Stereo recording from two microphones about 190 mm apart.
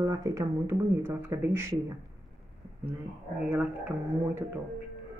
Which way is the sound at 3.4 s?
10° right (ahead or behind).